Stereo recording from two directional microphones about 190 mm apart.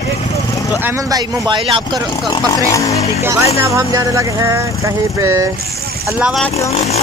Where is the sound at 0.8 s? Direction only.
20° right (ahead or behind).